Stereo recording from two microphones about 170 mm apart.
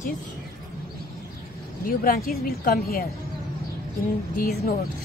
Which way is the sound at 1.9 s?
55° left (ahead or behind).